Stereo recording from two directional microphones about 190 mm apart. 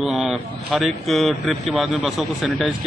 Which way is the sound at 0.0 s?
Centre (ahead or behind).